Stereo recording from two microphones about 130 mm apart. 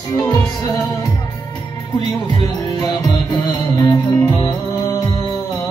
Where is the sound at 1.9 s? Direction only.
35° left (ahead or behind).